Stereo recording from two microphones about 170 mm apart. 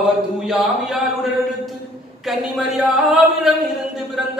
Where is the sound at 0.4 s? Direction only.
Centre (ahead or behind).